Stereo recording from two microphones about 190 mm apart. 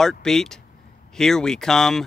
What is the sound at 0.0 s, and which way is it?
Speech, centre (ahead or behind).